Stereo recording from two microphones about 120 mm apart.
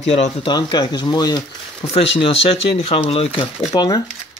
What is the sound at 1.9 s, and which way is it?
Speech, 55° left (ahead or behind).